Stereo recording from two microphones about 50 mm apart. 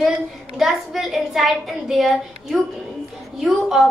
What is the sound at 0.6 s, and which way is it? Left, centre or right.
A woman's voice, centre.